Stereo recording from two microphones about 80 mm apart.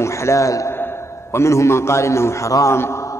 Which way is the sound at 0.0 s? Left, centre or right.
Left.